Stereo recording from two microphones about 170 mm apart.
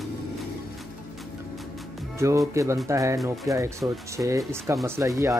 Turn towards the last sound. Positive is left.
turn(degrees=-20)  # may be behind; listen again after turning